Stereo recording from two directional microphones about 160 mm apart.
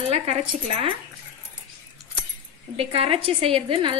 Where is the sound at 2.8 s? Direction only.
35° right (ahead or behind).